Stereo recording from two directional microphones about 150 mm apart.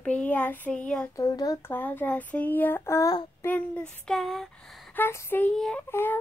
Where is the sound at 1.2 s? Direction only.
25° left (ahead or behind).